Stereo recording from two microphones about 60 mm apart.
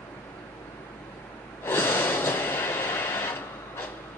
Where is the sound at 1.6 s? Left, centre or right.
Left.